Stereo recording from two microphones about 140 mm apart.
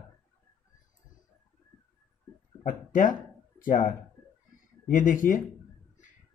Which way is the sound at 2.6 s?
75° left (ahead or behind).